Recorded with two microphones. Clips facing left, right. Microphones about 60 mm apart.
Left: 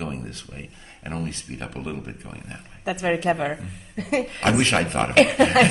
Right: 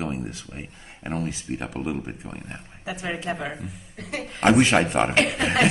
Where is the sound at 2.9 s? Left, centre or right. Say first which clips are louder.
Left 7 dB; left.